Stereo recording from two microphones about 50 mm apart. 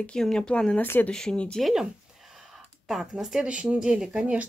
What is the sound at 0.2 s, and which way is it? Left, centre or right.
Speech, centre.